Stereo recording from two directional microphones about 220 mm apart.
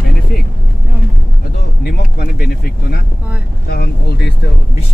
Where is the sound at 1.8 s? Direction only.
45° left (ahead or behind).